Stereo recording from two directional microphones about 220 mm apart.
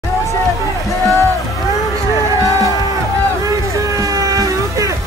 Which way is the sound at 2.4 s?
15° right (ahead or behind).